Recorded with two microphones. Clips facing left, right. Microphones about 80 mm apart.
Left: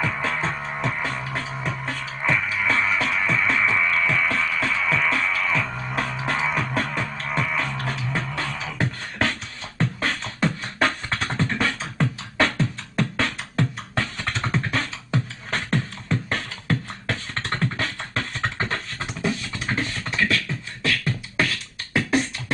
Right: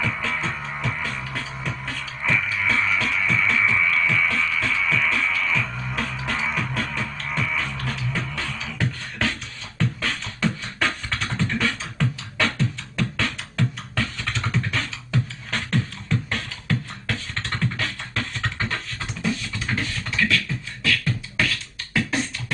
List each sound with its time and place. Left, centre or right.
0.0 s music: left
9.8 s beatboxing: left